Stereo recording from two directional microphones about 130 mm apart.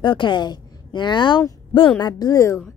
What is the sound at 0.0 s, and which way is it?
A woman's voice, 35° left (ahead or behind).